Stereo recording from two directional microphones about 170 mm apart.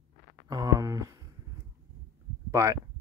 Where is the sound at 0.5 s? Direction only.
20° right (ahead or behind).